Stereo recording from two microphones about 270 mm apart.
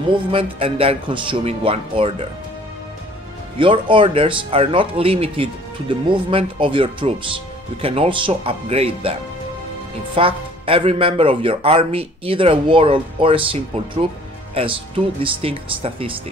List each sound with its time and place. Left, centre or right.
0.1 s speech: centre
3.5 s speech: centre
10.1 s speech: centre